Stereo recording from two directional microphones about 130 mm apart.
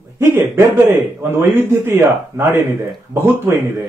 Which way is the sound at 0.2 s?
20° right (ahead or behind).